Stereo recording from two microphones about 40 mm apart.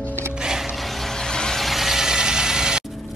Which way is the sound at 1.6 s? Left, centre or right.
Centre.